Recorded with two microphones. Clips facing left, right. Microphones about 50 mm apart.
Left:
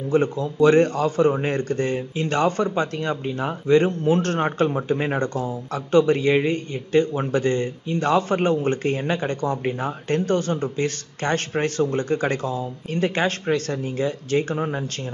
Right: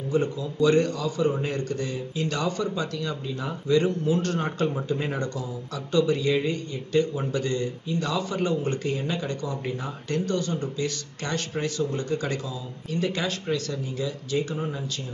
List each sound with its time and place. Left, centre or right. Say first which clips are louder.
0.1 s a man's voice: left 5 dB; left